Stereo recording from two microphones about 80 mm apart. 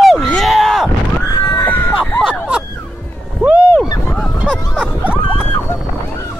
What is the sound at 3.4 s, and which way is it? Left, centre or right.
Boat, centre.